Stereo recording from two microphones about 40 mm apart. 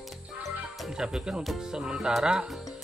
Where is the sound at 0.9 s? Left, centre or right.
Centre.